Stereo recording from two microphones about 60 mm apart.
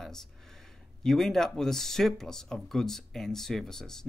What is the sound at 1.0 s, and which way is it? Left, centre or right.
Speech, centre.